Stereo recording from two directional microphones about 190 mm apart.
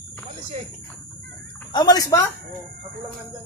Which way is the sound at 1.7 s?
20° left (ahead or behind).